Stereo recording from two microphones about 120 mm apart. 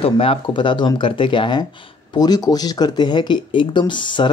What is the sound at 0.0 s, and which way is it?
Speech, 50° left (ahead or behind).